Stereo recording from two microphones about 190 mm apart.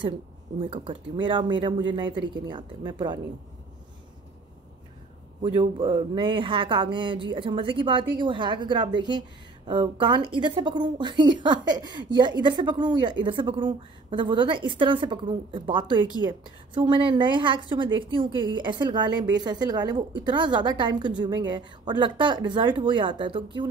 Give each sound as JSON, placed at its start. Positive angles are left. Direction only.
{"t": 0.6, "sound": "speech", "side_deg": -25}
{"t": 5.4, "sound": "speech", "side_deg": -25}